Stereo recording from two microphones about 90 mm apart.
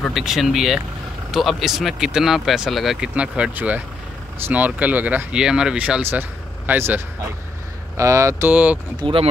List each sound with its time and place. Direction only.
0.1 s speech: centre (ahead or behind); by 7.0 s 20° right (ahead or behind)
8.0 s speech: 35° right (ahead or behind)
8.5 s speech: 15° right (ahead or behind)
9.0 s speech: 90° right